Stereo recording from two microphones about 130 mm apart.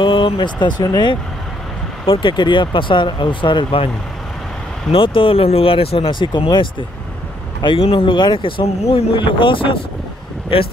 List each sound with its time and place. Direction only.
0.0 s speech: 40° left (ahead or behind)
2.0 s speech: 40° left (ahead or behind)
4.9 s speech: 45° left (ahead or behind)